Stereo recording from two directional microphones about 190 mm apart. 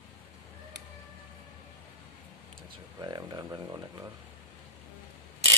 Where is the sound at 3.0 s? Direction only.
20° right (ahead or behind).